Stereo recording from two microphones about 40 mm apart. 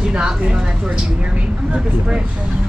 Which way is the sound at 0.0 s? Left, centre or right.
Right.